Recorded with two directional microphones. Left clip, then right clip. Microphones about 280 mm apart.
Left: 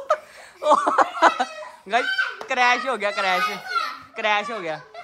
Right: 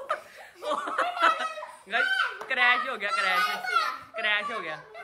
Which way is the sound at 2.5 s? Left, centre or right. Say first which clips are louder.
Left 4 dB; centre.